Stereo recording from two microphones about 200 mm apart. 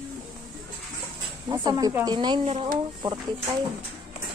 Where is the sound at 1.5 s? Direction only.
20° right (ahead or behind).